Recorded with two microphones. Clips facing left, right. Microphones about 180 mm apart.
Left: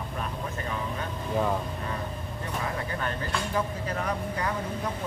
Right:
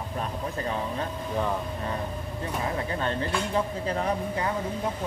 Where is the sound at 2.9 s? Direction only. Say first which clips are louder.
Right 3 dB; 25° right (ahead or behind).